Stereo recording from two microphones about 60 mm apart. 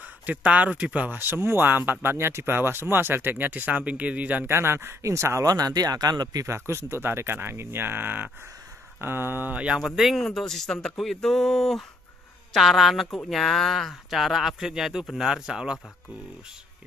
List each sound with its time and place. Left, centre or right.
0.0 s speech: right
1.2 s speech: right
4.5 s speech: right
5.4 s speech: right
6.4 s speech: right
9.8 s speech: centre